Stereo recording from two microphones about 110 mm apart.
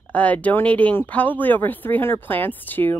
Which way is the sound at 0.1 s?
15° left (ahead or behind).